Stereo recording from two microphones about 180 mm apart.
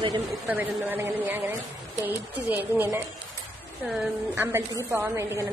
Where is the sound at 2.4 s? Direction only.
10° right (ahead or behind).